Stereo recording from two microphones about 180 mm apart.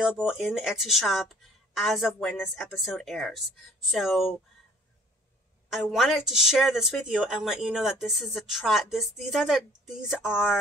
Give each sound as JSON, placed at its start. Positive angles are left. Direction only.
{"t": 0.0, "sound": "a woman's voice", "side_deg": -5}
{"t": 5.7, "sound": "a woman's voice", "side_deg": 0}